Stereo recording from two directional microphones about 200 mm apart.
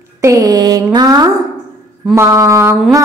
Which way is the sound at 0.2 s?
15° right (ahead or behind).